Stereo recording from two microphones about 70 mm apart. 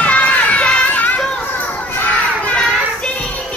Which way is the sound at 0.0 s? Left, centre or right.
Centre.